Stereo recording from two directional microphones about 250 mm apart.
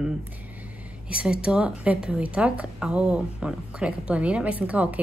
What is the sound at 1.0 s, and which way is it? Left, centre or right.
A woman's voice, centre.